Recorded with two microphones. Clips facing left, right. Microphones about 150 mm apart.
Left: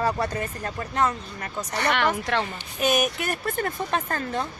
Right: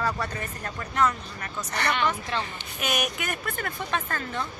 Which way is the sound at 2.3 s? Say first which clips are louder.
Left 5 dB; 70° left (ahead or behind).